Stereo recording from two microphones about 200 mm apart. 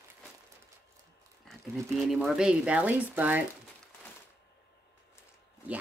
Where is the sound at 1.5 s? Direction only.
Centre (ahead or behind).